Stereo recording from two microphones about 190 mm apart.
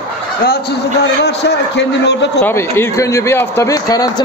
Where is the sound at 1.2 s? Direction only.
65° left (ahead or behind).